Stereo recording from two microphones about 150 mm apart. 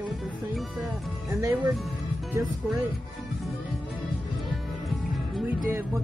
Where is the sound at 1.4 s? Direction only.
15° right (ahead or behind).